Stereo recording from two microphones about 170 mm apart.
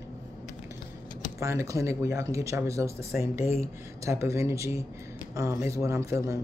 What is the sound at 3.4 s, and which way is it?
Speech, 40° left (ahead or behind).